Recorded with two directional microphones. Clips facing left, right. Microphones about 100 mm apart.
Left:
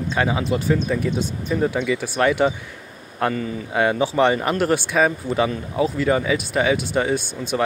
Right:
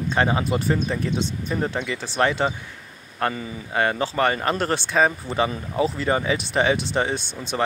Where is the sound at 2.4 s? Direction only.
10° left (ahead or behind).